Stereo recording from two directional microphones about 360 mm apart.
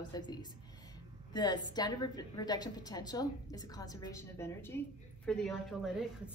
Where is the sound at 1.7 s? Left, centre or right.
Centre.